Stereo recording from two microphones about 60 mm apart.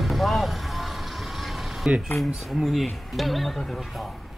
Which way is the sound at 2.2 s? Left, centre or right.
Centre.